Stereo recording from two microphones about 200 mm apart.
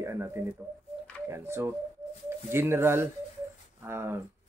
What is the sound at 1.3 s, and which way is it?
Speech, 10° right (ahead or behind).